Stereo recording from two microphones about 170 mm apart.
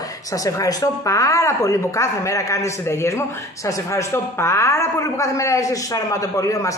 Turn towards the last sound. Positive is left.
turn(degrees=20)  # may be behind; listen again after turning